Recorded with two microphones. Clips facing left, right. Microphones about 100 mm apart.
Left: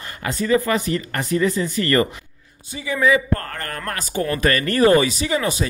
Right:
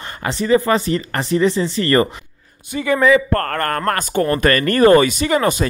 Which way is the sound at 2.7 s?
60° right (ahead or behind).